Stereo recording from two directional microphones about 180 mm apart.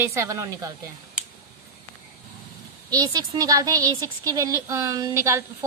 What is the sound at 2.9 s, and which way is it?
A woman's voice, 20° right (ahead or behind).